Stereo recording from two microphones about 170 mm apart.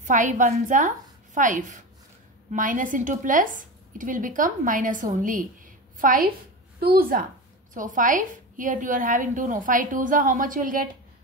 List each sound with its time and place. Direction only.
0.0 s a woman's voice: 50° right (ahead or behind)
7.7 s a woman's voice: 50° right (ahead or behind)